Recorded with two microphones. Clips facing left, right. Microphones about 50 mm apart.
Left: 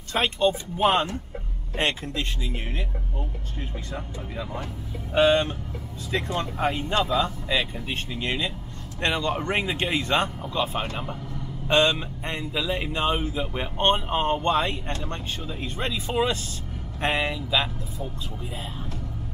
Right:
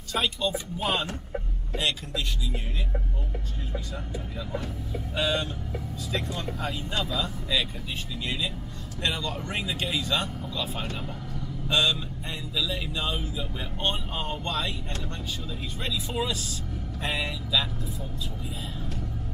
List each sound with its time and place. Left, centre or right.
0.1 s speech: left
3.7 s speech: left